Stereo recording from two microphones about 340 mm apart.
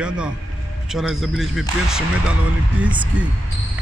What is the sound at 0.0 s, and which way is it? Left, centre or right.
Speech, centre.